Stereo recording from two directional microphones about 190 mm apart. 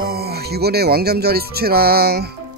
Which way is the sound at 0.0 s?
55° right (ahead or behind).